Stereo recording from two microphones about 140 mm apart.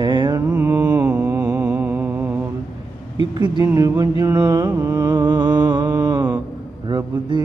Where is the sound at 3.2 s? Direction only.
35° right (ahead or behind).